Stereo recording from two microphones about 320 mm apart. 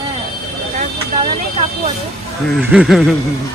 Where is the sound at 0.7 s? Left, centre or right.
Right.